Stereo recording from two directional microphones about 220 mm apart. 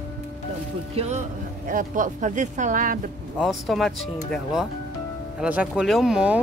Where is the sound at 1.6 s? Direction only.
35° right (ahead or behind).